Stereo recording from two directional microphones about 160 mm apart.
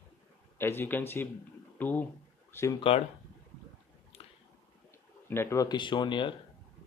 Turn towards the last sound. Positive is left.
turn(degrees=30)  # may be behind; listen again after turning